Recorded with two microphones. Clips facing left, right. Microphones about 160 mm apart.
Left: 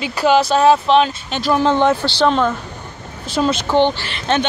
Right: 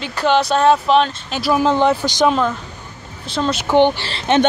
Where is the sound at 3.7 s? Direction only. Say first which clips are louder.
Right 5 dB; 15° right (ahead or behind).